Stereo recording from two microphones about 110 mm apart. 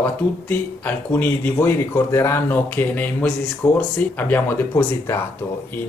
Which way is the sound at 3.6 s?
25° left (ahead or behind).